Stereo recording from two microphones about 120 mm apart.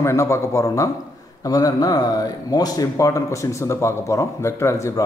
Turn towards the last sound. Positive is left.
turn(degrees=25)  # may be behind; listen again after turning